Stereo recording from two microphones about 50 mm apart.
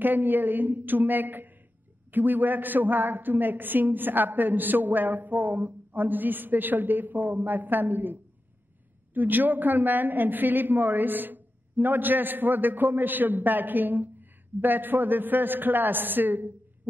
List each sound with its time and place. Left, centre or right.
0.0 s a woman's voice: right